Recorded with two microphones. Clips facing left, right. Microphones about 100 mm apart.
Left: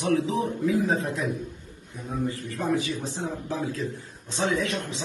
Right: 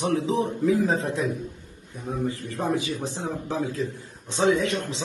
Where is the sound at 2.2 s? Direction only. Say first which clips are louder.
Right 1 dB; 20° right (ahead or behind).